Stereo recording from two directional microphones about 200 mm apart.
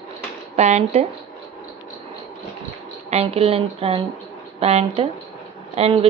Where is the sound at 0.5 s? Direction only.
35° right (ahead or behind).